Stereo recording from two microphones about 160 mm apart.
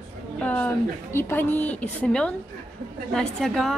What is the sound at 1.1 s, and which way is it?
A woman's voice, 15° left (ahead or behind).